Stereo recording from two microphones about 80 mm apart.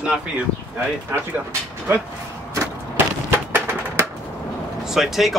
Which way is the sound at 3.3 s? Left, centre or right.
Right.